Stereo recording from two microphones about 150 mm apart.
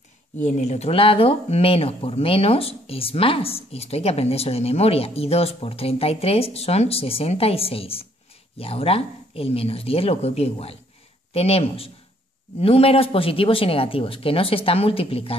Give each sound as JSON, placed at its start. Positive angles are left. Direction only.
{"t": 0.4, "sound": "speech", "side_deg": 50}